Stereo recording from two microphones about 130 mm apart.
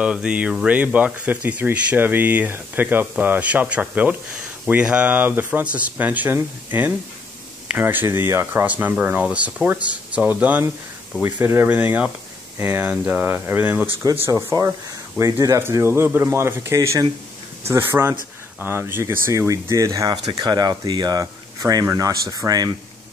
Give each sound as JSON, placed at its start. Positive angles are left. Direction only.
{"t": 0.0, "sound": "speech", "side_deg": -5}